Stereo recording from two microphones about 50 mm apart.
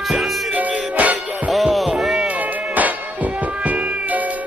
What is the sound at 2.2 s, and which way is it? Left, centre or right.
Cat, right.